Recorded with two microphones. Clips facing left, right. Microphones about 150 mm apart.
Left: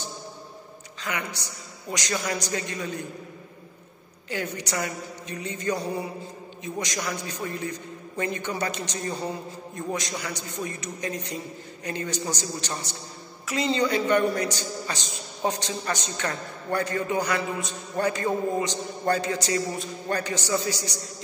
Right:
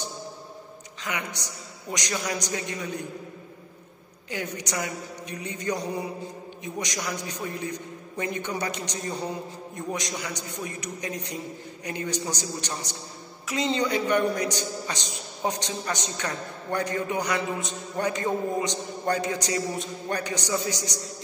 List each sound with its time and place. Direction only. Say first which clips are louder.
1.0 s a man's voice: left 1 dB; 15° right (ahead or behind)
4.3 s a man's voice: left 2 dB; 15° right (ahead or behind)